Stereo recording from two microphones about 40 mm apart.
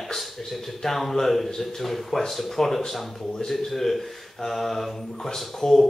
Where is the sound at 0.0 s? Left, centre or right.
Centre.